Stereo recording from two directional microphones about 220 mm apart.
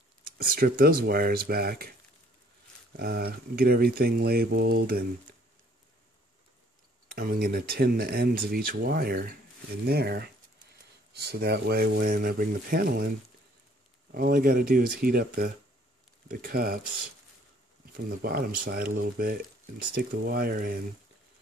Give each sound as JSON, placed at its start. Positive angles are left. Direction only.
{"t": 0.4, "sound": "speech", "side_deg": -40}
{"t": 3.0, "sound": "speech", "side_deg": -45}
{"t": 7.1, "sound": "speech", "side_deg": -45}
{"t": 11.3, "sound": "speech", "side_deg": -45}
{"t": 14.1, "sound": "speech", "side_deg": -40}
{"t": 17.9, "sound": "speech", "side_deg": -45}